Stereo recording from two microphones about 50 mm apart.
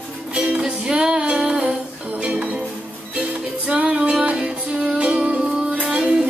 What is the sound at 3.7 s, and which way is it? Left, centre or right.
Music, centre.